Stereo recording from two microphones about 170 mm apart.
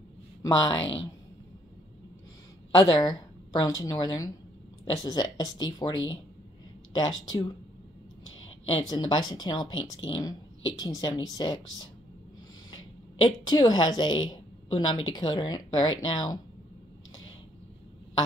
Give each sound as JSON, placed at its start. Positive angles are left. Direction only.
{"t": 0.4, "sound": "a woman's voice", "side_deg": 30}
{"t": 2.7, "sound": "a woman's voice", "side_deg": 25}
{"t": 8.6, "sound": "a woman's voice", "side_deg": 35}
{"t": 13.2, "sound": "a woman's voice", "side_deg": 25}